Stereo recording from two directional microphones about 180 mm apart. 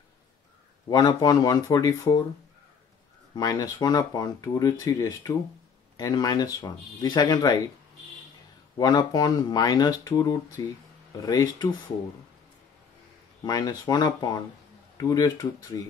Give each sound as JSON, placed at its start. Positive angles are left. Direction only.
{"t": 0.8, "sound": "speech", "side_deg": 20}
{"t": 3.3, "sound": "speech", "side_deg": 20}
{"t": 8.7, "sound": "speech", "side_deg": 20}
{"t": 13.4, "sound": "speech", "side_deg": 20}